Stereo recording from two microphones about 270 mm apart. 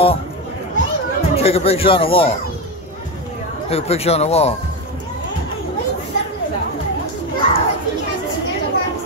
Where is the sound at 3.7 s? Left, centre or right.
Left.